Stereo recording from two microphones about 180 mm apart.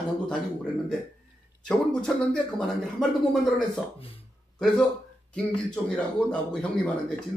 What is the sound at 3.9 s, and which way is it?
Speech, 30° left (ahead or behind).